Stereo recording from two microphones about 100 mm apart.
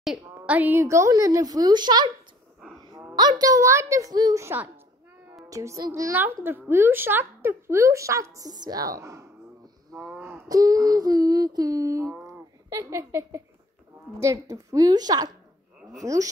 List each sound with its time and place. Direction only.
0.2 s a woman's voice: 20° right (ahead or behind)
0.7 s a woman's voice: 30° right (ahead or behind); by 2.0 s 45° right (ahead or behind)
3.2 s a woman's voice: 40° right (ahead or behind)
5.5 s a woman's voice: 35° right (ahead or behind)
6.1 s a woman's voice: 20° right (ahead or behind)
9.9 s wail: centre (ahead or behind)
10.5 s a woman's voice: 35° right (ahead or behind)